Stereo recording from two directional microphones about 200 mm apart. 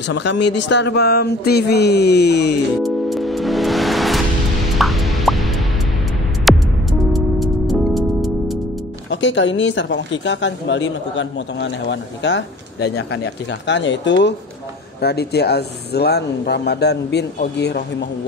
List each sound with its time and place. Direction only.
0.0 s speech: 60° left (ahead or behind)
2.8 s music: centre (ahead or behind)
9.1 s speech: 65° left (ahead or behind)